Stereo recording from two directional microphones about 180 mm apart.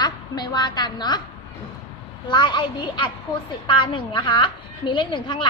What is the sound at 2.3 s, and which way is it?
A woman's voice, 25° left (ahead or behind).